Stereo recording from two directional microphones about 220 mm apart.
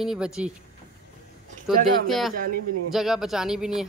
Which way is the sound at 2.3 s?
40° right (ahead or behind).